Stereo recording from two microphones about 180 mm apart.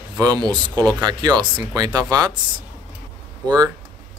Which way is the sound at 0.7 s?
5° left (ahead or behind).